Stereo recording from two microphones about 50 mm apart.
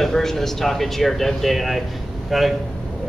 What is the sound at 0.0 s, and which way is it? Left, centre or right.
Speech, centre.